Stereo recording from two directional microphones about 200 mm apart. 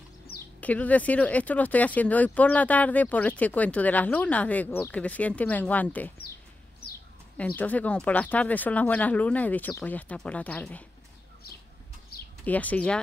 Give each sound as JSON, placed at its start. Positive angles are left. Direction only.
{"t": 0.6, "sound": "speech", "side_deg": 5}
{"t": 7.3, "sound": "speech", "side_deg": 10}
{"t": 12.1, "sound": "a sound", "side_deg": 50}
{"t": 12.4, "sound": "speech", "side_deg": 5}